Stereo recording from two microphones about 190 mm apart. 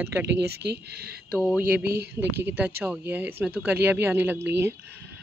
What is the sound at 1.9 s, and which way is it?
Speech, 55° right (ahead or behind).